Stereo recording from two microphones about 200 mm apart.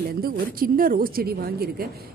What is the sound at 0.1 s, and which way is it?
A woman's voice, 45° right (ahead or behind).